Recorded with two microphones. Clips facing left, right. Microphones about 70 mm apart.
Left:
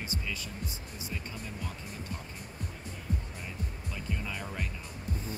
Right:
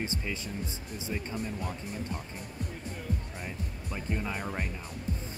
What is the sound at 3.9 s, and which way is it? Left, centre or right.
Music, right.